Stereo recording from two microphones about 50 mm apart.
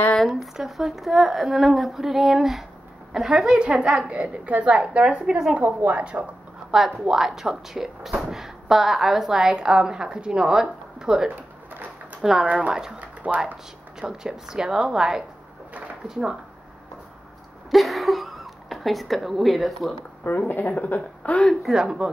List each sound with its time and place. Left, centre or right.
0.2 s speech: centre
3.6 s a woman's voice: right
6.7 s speech: centre
11.2 s pigeon: right
12.2 s speech: centre
12.4 s a woman's voice: right
12.7 s speech: centre
17.6 s speech: centre
20.2 s a woman's voice: left
21.7 s speech: centre